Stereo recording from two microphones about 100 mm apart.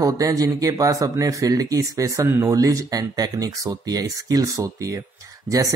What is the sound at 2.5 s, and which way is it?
Speech, 35° right (ahead or behind).